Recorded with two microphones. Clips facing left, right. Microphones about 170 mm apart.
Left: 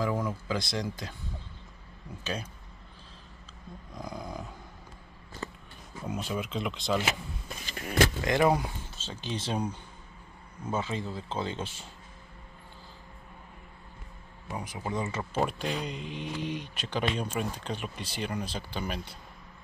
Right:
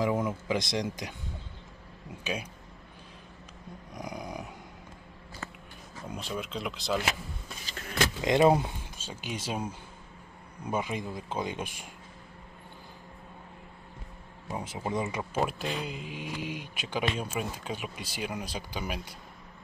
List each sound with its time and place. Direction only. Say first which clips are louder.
0.0 s speech: right 2 dB; 20° right (ahead or behind)
3.9 s dog: even; 15° right (ahead or behind)
6.0 s speech: left 3 dB; 5° left (ahead or behind)
8.2 s speech: right 7 dB; 20° right (ahead or behind)
8.9 s speech: left 3 dB; 10° right (ahead or behind)
14.5 s speech: right 2 dB; 25° right (ahead or behind)